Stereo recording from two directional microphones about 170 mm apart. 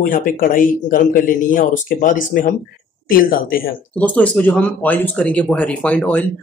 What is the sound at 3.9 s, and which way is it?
Speech, 10° left (ahead or behind).